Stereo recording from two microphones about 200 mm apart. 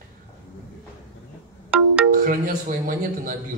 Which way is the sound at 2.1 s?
45° right (ahead or behind).